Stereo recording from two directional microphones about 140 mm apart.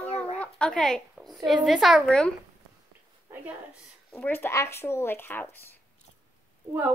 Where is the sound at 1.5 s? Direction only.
Centre (ahead or behind).